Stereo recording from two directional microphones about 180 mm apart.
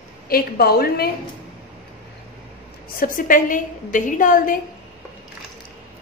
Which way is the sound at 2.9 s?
50° left (ahead or behind).